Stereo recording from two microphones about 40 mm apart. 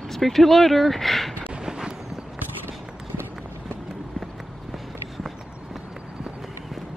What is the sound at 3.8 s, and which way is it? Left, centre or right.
Run, centre.